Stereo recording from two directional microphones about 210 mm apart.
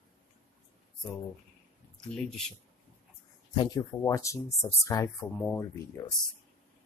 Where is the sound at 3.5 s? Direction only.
20° left (ahead or behind).